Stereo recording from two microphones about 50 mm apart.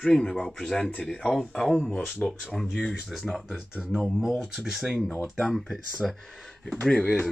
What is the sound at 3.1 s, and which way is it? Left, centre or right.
Speech, centre.